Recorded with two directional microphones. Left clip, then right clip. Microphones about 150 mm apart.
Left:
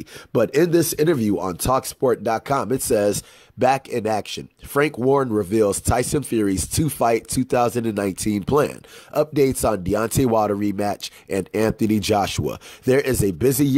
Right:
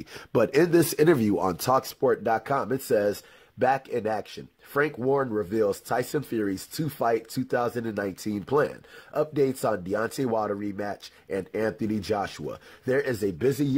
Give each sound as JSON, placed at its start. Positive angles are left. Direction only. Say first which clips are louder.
{"t": 0.3, "sound": "speech", "louder": "left 4 dB", "side_deg": 10}
{"t": 0.7, "sound": "speech", "louder": "left 2 dB", "side_deg": 0}
{"t": 1.7, "sound": "speech", "louder": "left 4 dB", "side_deg": 15}